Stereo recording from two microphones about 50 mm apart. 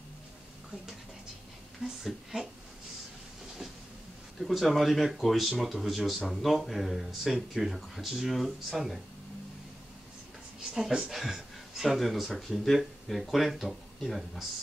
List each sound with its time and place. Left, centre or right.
1.8 s speech: centre
4.4 s speech: centre
10.7 s speech: centre